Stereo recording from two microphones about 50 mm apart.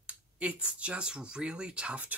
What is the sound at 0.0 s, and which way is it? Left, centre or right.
Speech, right.